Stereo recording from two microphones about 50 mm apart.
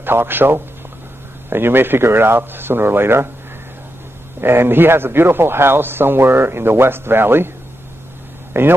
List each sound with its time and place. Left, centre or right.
0.0 s speech: right
4.4 s speech: right
8.5 s speech: right